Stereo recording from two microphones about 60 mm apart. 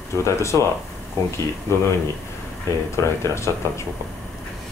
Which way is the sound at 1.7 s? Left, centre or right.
Left.